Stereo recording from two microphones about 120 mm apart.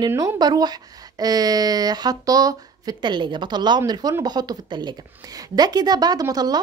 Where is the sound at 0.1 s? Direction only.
30° right (ahead or behind).